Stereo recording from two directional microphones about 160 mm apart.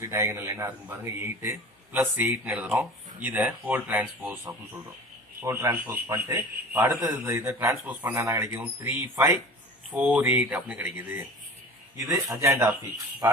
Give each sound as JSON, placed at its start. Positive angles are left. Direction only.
{"t": 0.0, "sound": "a man's voice", "side_deg": -20}
{"t": 12.1, "sound": "a man's voice", "side_deg": -20}